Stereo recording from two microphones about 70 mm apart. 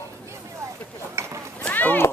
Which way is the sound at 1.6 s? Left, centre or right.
Left.